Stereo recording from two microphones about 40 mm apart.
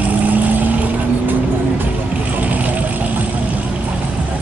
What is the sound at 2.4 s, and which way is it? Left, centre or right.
Vehicle, right.